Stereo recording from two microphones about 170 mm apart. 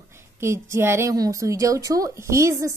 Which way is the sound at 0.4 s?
15° right (ahead or behind).